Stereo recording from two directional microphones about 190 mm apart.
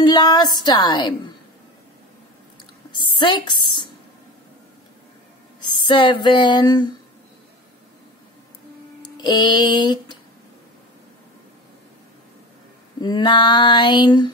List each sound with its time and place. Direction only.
0.0 s female singing: 20° left (ahead or behind)
2.9 s speech: 25° left (ahead or behind)
5.9 s female singing: 25° left (ahead or behind)
9.1 s female singing: 20° left (ahead or behind)
13.0 s female singing: 25° left (ahead or behind)